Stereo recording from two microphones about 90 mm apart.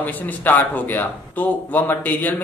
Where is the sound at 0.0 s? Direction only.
20° left (ahead or behind).